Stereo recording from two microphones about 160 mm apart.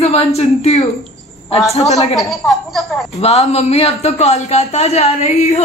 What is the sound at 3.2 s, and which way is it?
Speech, 40° left (ahead or behind).